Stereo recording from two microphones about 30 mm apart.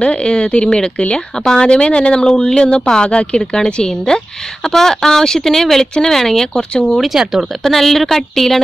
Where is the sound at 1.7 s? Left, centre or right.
Left.